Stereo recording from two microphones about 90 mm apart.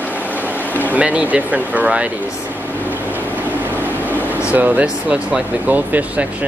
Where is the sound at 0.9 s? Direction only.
15° right (ahead or behind).